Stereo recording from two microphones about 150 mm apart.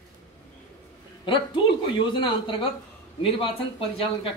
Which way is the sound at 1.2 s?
30° left (ahead or behind).